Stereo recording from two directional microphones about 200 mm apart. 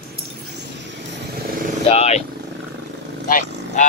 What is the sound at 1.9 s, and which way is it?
Speech, 30° left (ahead or behind).